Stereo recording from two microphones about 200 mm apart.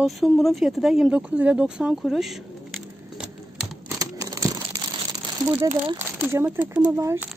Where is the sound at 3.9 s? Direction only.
15° right (ahead or behind).